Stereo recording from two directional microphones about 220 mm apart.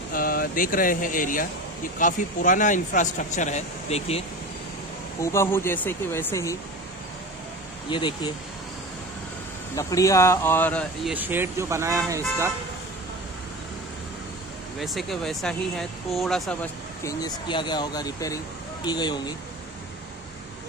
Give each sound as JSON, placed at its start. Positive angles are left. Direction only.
{"t": 0.1, "sound": "a man's voice", "side_deg": 40}
{"t": 5.2, "sound": "speech", "side_deg": 10}
{"t": 7.9, "sound": "speech", "side_deg": 20}
{"t": 9.8, "sound": "speech", "side_deg": 15}
{"t": 11.1, "sound": "speech", "side_deg": -10}
{"t": 14.8, "sound": "speech", "side_deg": 0}
{"t": 17.0, "sound": "speech", "side_deg": 15}